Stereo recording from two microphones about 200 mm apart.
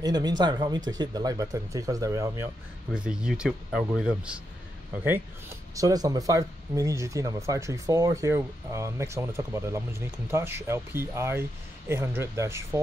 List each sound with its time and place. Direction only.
0.0 s speech: 20° right (ahead or behind)
2.9 s speech: 5° right (ahead or behind)